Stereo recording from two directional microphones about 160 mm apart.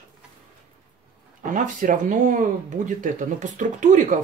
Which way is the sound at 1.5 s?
55° right (ahead or behind).